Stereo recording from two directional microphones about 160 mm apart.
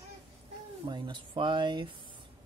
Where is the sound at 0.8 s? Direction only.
30° right (ahead or behind).